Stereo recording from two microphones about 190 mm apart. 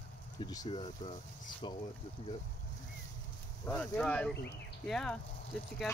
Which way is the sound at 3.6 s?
5° left (ahead or behind).